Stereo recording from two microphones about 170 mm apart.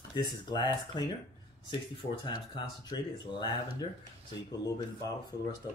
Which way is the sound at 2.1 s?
30° left (ahead or behind).